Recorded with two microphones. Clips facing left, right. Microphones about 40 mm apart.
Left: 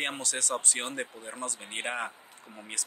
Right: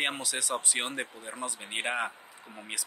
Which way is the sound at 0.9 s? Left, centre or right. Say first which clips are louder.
Even; right.